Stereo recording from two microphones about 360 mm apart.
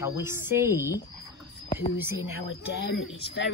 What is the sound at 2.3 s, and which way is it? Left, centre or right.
Speech, left.